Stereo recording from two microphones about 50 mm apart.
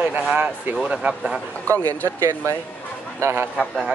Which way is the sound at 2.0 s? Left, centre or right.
Right.